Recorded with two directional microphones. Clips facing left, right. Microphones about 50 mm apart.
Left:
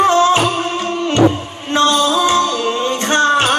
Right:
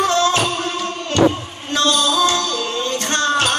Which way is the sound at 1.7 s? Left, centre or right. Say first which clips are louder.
Left 4 dB; left.